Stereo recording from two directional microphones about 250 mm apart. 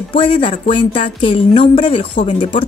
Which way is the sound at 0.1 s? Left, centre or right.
Centre.